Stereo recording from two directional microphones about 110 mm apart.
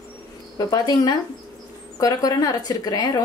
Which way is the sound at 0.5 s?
35° left (ahead or behind).